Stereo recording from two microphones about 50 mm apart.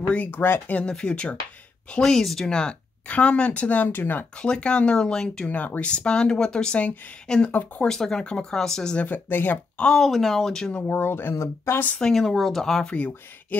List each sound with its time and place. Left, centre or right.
0.0 s speech: left
0.4 s speech: left
1.0 s speech: left
3.1 s a woman's voice: left
4.4 s speech: centre
5.5 s a woman's voice: left
5.9 s speech: centre
8.9 s a woman's voice: left
9.9 s speech: centre
10.8 s a woman's voice: left
11.3 s speech: left
12.0 s speech: centre
12.9 s speech: left